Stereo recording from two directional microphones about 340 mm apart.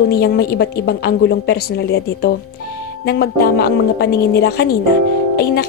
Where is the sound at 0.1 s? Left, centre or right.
Left.